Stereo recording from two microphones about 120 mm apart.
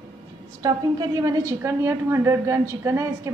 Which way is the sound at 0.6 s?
30° right (ahead or behind).